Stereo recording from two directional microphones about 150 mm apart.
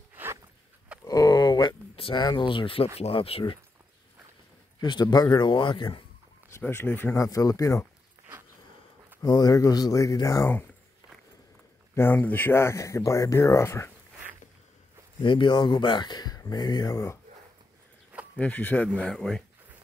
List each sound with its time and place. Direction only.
0.1 s zipper: 15° right (ahead or behind)
1.0 s a sound: 25° left (ahead or behind)
2.0 s speech: 35° left (ahead or behind)
4.7 s speech: 25° left (ahead or behind)
6.5 s speech: 15° left (ahead or behind)
9.2 s speech: 25° left (ahead or behind)
11.9 s speech: 15° left (ahead or behind)
15.2 s speech: 30° left (ahead or behind)
18.3 s speech: 10° left (ahead or behind)